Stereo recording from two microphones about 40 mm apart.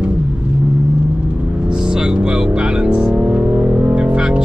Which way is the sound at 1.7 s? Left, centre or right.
Centre.